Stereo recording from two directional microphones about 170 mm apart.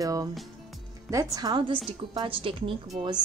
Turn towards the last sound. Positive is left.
turn(degrees=-30)  # may be behind; listen again after turning